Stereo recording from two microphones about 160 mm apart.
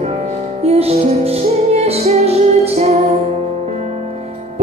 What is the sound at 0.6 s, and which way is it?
Music, 40° right (ahead or behind).